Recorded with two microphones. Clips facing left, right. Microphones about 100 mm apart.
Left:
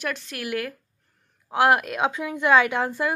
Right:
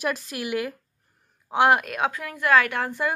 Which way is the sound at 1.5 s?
5° left (ahead or behind).